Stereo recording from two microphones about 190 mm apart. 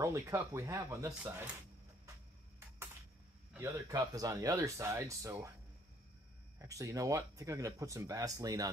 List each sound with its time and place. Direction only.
0.0 s speech: 15° right (ahead or behind)
3.5 s speech: 15° right (ahead or behind)
6.6 s speech: 15° right (ahead or behind)